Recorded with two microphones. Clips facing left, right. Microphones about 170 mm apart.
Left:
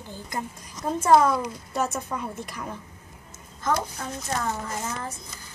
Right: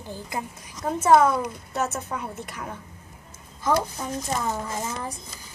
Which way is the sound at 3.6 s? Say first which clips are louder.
Right 3 dB; 15° right (ahead or behind).